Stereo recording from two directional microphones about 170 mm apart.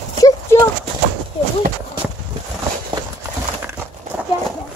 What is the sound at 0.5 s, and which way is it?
Bird, 15° left (ahead or behind).